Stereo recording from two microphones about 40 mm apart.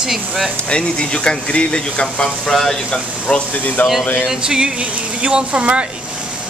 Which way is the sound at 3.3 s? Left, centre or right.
Left.